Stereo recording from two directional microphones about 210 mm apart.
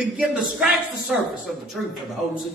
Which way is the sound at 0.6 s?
Centre (ahead or behind).